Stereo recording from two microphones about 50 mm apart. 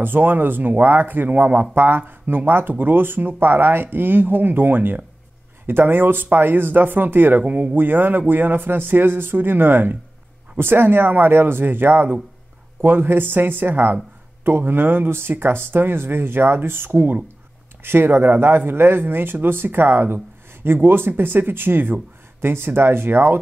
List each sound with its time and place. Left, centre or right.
0.0 s speech: right
7.4 s speech: right